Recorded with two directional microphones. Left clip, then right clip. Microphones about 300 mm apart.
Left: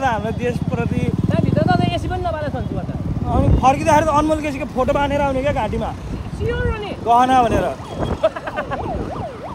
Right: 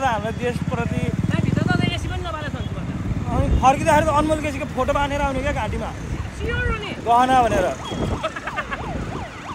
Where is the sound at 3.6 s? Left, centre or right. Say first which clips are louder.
Left 1 dB; centre.